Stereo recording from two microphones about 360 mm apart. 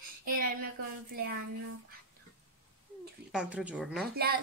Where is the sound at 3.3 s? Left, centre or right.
Centre.